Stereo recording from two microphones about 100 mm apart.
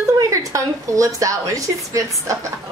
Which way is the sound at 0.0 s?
35° right (ahead or behind).